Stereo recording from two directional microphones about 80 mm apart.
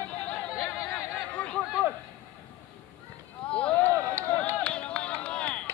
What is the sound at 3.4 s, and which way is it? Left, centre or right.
Run, centre.